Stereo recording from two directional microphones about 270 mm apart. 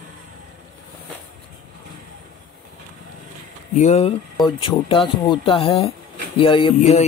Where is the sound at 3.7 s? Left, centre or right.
Left.